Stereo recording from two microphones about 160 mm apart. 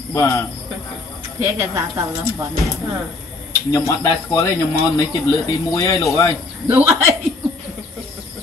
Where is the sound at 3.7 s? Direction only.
20° left (ahead or behind).